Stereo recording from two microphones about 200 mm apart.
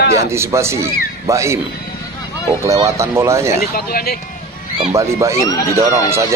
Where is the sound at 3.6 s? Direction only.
50° left (ahead or behind).